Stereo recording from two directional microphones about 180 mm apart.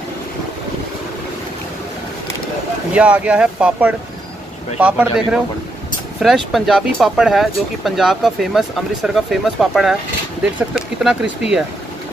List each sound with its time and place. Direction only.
2.9 s speech: 5° right (ahead or behind)